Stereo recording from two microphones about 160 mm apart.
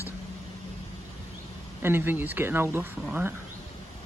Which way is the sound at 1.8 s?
15° right (ahead or behind).